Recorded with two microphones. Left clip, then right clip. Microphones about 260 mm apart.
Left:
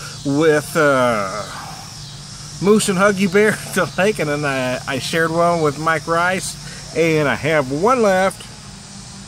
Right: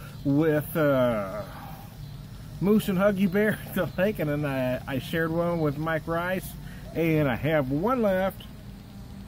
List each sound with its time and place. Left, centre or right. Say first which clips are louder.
0.3 s speech: left 9 dB; centre
2.6 s speech: left 9 dB; centre